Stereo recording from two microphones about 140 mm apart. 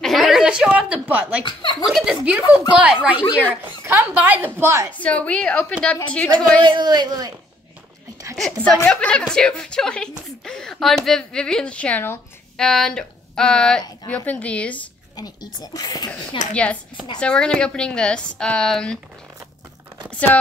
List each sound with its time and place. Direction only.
0.0 s a sound: centre (ahead or behind)
1.4 s speech: 35° left (ahead or behind)
1.9 s a woman's voice: 5° right (ahead or behind)
5.0 s a woman's voice: 10° left (ahead or behind)
6.6 s a man's voice: 35° right (ahead or behind)
8.4 s a woman's voice: 5° left (ahead or behind)
12.5 s a woman's voice: 5° left (ahead or behind)
15.1 s speech: 30° left (ahead or behind)
16.3 s speech: 40° left (ahead or behind)
17.2 s a woman's voice: 5° left (ahead or behind)
20.2 s a woman's voice: 10° left (ahead or behind)